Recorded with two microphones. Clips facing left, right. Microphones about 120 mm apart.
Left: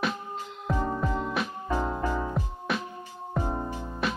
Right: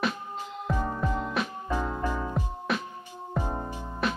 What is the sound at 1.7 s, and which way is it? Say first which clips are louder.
Music: left 3 dB; 15° left (ahead or behind).